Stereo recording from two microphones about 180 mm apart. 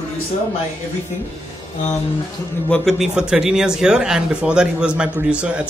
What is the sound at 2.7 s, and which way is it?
Speech, centre (ahead or behind).